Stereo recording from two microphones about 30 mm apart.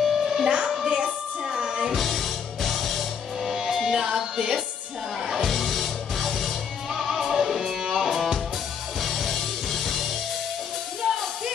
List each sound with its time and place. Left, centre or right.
0.0 s music: centre
0.8 s music: right
1.5 s music: centre
2.0 s music: centre
3.4 s music: centre
5.5 s music: centre
6.9 s music: centre
9.0 s music: centre